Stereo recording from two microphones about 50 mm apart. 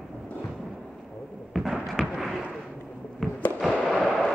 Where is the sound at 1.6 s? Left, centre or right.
Centre.